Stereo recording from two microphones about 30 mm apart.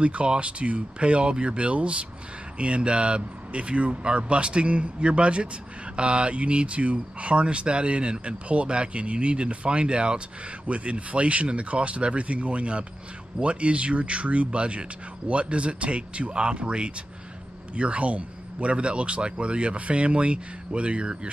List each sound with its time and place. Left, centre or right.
0.0 s a man's voice: right